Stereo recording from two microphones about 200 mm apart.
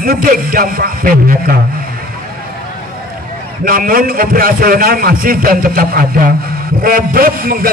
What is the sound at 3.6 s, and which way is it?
A man's voice, 45° right (ahead or behind).